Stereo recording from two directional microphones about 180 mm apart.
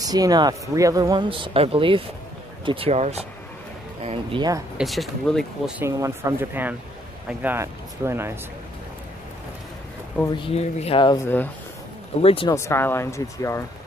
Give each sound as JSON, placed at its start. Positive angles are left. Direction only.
{"t": 0.0, "sound": "speech", "side_deg": -20}
{"t": 4.7, "sound": "speech", "side_deg": 0}
{"t": 5.8, "sound": "speech", "side_deg": -15}
{"t": 10.4, "sound": "speech", "side_deg": 35}
{"t": 12.2, "sound": "speech", "side_deg": 35}
{"t": 12.4, "sound": "speech", "side_deg": 15}